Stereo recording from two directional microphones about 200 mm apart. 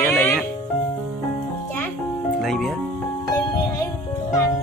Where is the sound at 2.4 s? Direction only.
Centre (ahead or behind).